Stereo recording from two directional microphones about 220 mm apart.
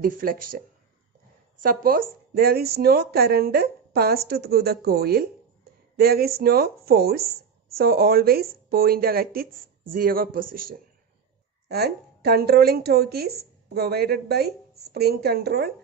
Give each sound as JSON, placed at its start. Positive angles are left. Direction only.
{"t": 0.0, "sound": "speech", "side_deg": -40}
{"t": 1.6, "sound": "speech", "side_deg": -40}